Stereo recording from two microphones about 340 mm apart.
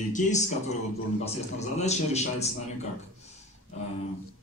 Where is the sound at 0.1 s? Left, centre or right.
Left.